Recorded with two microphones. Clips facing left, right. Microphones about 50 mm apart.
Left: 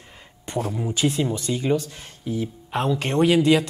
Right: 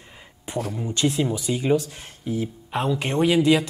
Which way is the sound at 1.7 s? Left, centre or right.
Right.